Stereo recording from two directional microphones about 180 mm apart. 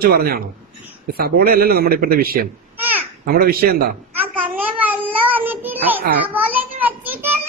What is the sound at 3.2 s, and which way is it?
A child's voice, 55° right (ahead or behind).